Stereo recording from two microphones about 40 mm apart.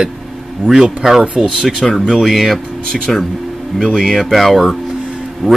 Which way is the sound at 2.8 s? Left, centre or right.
Centre.